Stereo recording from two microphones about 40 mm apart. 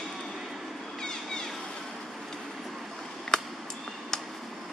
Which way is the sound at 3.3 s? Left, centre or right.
Centre.